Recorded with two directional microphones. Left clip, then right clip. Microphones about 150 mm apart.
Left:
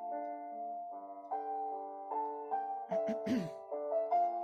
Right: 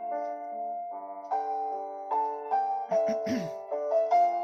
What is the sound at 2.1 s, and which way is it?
Music, 25° right (ahead or behind).